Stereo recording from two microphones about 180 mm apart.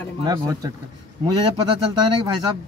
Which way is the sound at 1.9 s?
20° right (ahead or behind).